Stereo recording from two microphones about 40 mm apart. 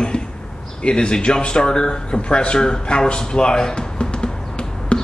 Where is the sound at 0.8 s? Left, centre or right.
Left.